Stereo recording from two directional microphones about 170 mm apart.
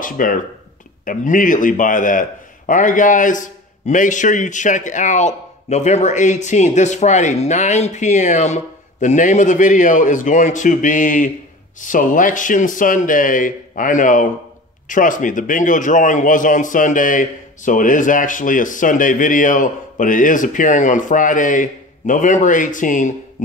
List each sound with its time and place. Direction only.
0.0 s a man's voice: 55° left (ahead or behind)